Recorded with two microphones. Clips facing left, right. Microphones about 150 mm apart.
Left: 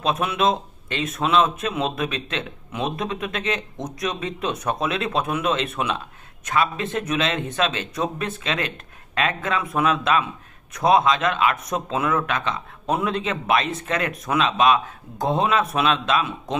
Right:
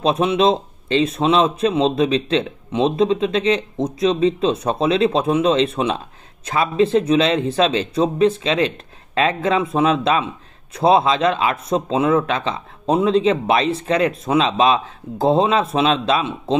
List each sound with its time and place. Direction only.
0.0 s speech: 25° right (ahead or behind)